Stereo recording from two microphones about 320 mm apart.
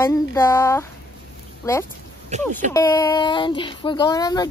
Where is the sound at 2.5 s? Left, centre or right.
Right.